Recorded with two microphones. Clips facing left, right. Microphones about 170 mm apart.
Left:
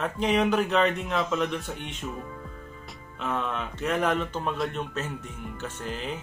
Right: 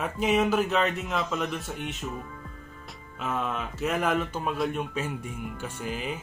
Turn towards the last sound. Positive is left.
turn(degrees=-10)  # may be behind; listen again after turning